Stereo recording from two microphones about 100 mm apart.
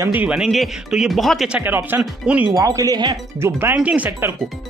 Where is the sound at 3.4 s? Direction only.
25° right (ahead or behind).